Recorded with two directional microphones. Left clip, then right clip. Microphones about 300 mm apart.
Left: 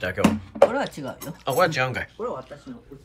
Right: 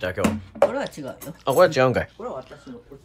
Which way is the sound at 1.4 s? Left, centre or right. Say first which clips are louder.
Right 5 dB; centre.